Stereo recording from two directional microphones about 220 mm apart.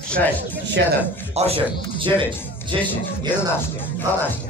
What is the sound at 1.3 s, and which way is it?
Speech, 25° right (ahead or behind).